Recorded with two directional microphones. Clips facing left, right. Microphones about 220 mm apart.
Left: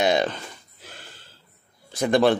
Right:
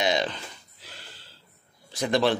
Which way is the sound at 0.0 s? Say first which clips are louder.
Left 4 dB; 50° left (ahead or behind).